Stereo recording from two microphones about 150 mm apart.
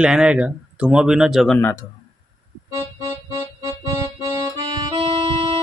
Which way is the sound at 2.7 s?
20° right (ahead or behind).